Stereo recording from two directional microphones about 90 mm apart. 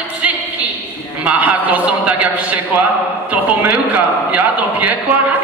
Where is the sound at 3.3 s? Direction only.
20° right (ahead or behind).